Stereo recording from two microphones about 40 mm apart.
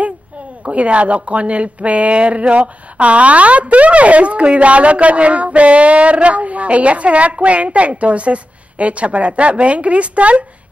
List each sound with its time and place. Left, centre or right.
0.7 s speech: right